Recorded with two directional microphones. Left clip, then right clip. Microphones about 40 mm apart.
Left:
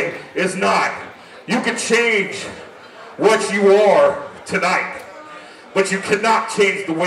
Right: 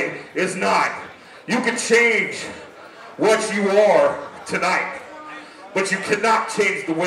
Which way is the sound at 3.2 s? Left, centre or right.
Centre.